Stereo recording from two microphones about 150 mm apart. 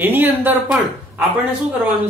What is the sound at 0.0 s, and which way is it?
A man's voice, 10° right (ahead or behind).